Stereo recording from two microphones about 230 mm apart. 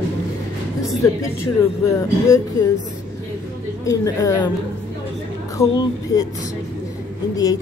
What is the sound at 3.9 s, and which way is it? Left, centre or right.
Speech, centre.